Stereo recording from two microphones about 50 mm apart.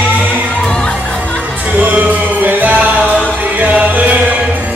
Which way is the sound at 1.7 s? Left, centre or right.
Right.